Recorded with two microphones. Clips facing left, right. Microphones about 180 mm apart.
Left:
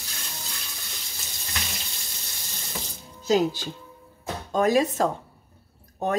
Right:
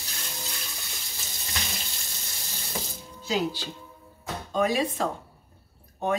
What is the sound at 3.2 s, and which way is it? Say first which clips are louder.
A woman's voice: left 6 dB; 45° left (ahead or behind).